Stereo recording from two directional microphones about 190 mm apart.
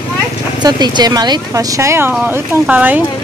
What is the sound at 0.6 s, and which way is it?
Speech, 20° right (ahead or behind).